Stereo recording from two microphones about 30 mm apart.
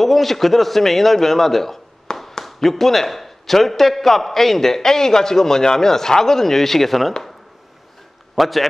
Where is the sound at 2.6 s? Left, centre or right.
Centre.